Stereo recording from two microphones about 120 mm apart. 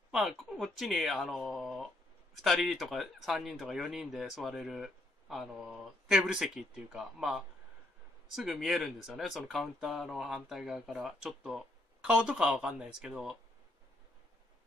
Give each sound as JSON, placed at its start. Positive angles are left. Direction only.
{"t": 0.1, "sound": "speech", "side_deg": -5}